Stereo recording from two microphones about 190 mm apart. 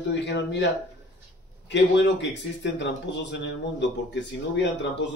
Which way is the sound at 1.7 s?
70° left (ahead or behind).